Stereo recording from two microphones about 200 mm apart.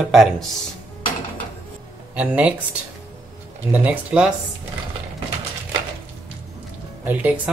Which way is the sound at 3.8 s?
5° right (ahead or behind).